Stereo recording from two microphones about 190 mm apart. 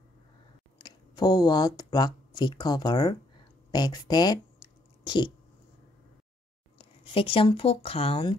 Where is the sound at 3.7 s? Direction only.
20° left (ahead or behind).